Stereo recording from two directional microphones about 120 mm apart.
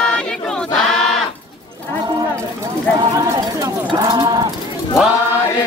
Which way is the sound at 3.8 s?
35° right (ahead or behind).